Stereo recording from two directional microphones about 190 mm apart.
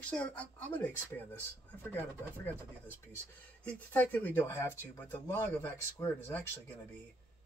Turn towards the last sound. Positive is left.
turn(degrees=10)  # may be behind; listen again after turning